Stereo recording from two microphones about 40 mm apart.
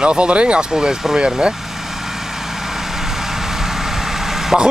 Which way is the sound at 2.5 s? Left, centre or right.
Centre.